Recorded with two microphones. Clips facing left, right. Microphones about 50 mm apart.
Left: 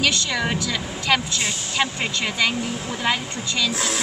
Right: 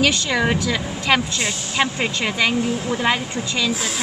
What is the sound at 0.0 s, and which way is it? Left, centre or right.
Speech, centre.